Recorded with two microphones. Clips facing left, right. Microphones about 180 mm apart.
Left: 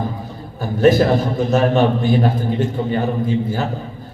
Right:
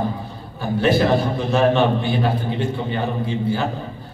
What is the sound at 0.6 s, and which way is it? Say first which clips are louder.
A man's voice: left 4 dB; 45° left (ahead or behind).